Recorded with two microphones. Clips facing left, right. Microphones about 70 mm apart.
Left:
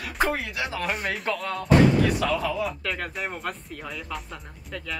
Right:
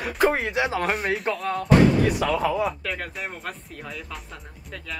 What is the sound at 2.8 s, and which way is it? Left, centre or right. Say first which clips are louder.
Speech: left 1 dB; centre.